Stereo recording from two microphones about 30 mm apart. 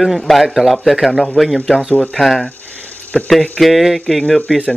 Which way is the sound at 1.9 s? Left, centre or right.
Left.